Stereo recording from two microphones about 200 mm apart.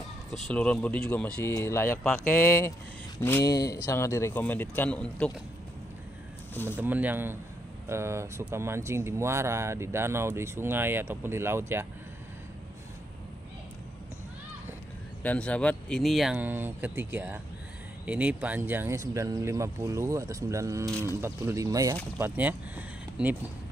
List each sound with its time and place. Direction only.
0.3 s speech: 5° left (ahead or behind)
6.8 s speech: 10° right (ahead or behind)
15.2 s speech: 5° left (ahead or behind)